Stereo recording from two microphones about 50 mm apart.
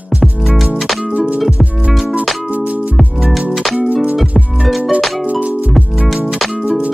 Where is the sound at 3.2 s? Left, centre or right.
Centre.